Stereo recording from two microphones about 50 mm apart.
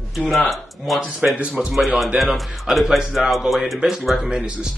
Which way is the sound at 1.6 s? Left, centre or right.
Centre.